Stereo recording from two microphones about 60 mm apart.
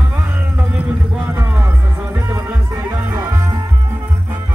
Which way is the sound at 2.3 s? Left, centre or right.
Right.